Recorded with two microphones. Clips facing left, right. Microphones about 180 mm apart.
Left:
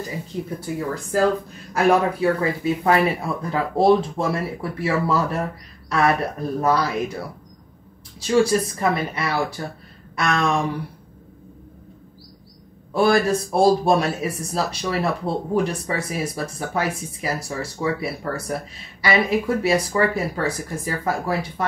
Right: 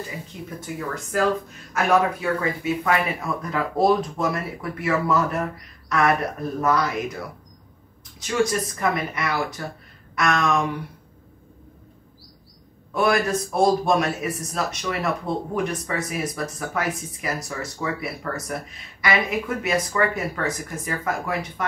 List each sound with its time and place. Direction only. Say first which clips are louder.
0.3 s speech: left 6 dB; 30° left (ahead or behind)
8.2 s speech: left 5 dB; 30° left (ahead or behind)
12.9 s speech: left 3 dB; 30° left (ahead or behind)